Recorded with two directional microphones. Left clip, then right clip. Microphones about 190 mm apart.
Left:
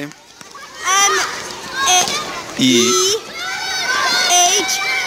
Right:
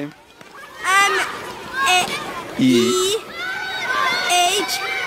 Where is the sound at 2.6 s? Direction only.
10° right (ahead or behind).